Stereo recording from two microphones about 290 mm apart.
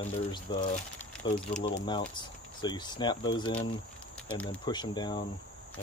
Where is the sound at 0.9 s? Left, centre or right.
Centre.